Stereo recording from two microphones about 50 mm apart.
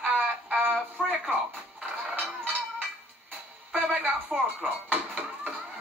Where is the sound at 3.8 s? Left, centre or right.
Right.